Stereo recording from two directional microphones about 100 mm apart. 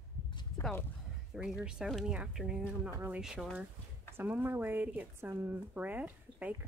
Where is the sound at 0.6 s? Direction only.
30° left (ahead or behind).